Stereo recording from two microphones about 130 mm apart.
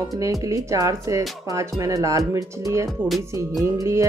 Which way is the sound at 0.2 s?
25° right (ahead or behind).